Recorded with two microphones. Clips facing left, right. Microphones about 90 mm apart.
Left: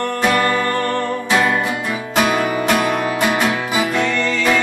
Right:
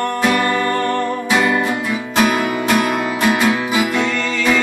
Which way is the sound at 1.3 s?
Centre (ahead or behind).